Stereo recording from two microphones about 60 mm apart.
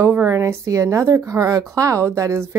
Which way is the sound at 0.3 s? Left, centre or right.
Right.